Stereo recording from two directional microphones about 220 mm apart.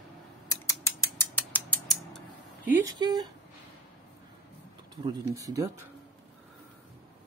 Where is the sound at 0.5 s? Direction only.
15° left (ahead or behind).